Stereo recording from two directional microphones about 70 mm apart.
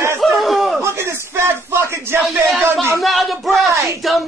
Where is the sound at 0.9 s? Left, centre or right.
Right.